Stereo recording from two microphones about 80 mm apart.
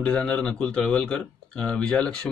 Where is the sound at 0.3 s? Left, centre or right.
Centre.